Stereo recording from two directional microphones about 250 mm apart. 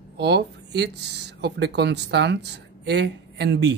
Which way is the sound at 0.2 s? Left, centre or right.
Right.